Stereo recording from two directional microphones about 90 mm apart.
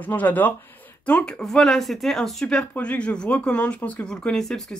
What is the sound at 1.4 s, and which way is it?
Speech, 5° left (ahead or behind).